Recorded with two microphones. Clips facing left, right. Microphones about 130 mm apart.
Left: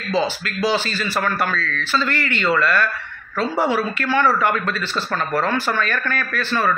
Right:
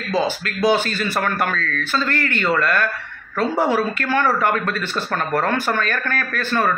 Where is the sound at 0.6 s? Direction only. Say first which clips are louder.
Right 3 dB; 55° right (ahead or behind).